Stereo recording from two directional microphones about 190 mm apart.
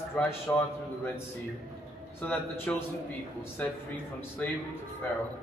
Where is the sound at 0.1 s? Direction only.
10° left (ahead or behind).